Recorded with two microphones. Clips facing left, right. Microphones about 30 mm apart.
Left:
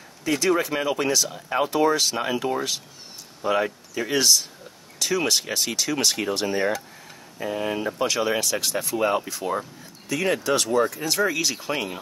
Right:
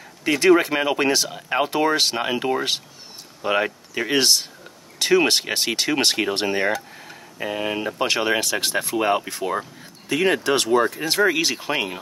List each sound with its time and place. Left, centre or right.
0.3 s speech: right
8.1 s speech: right